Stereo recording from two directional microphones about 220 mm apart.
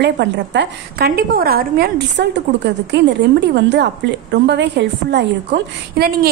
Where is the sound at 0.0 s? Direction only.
50° right (ahead or behind).